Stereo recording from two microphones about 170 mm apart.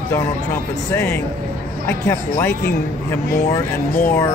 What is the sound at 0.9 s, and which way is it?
Speech, 10° left (ahead or behind).